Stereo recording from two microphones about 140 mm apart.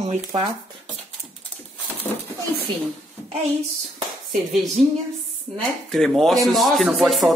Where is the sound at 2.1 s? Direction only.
25° left (ahead or behind).